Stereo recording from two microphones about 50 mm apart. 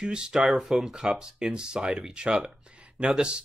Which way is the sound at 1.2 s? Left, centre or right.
Centre.